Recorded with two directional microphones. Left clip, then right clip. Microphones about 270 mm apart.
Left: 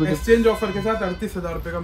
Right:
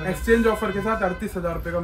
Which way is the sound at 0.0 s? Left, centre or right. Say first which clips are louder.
Left 3 dB; centre.